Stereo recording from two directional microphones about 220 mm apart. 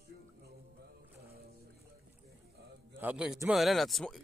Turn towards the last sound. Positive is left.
turn(degrees=0)  # may be behind; listen again after turning